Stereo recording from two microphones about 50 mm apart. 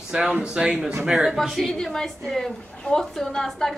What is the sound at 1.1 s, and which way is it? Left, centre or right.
Speech, centre.